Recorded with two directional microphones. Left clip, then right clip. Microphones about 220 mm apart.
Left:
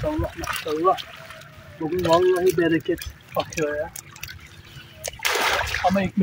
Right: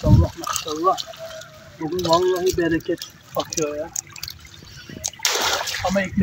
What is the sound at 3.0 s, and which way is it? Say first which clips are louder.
Speech: even; 5° left (ahead or behind).